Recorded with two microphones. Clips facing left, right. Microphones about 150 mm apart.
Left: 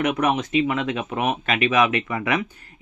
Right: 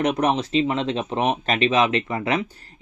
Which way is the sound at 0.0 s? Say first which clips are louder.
Right 1 dB; 35° right (ahead or behind).